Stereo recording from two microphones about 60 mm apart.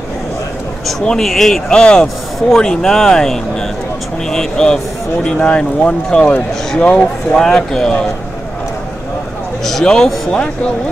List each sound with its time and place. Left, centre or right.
1.0 s speech: centre
7.3 s speech: centre
9.7 s a man's voice: centre